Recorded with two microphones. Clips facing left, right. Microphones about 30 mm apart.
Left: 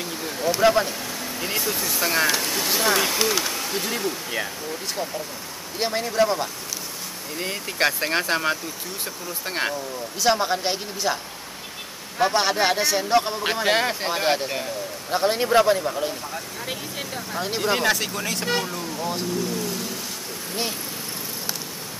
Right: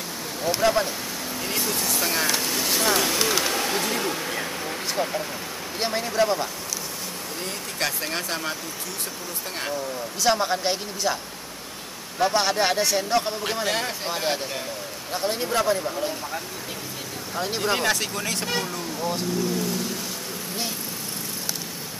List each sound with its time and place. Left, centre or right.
0.6 s a man's voice: centre
4.6 s speech: right
5.8 s speech: centre
7.4 s speech: left
10.2 s a man's voice: centre
12.2 s a man's voice: centre
17.4 s speech: centre